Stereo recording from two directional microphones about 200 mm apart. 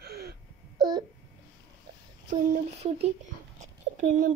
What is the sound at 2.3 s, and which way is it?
Speech, 30° right (ahead or behind).